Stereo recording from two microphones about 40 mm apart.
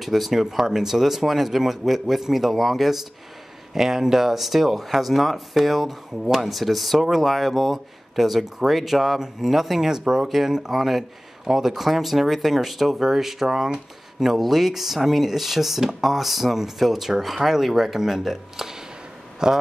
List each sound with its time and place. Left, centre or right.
0.0 s speech: centre